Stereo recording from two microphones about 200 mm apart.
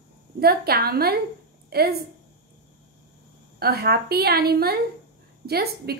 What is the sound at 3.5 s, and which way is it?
A woman's voice, 50° right (ahead or behind).